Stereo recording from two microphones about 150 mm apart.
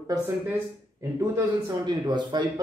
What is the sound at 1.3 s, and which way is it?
A man's voice, 25° right (ahead or behind).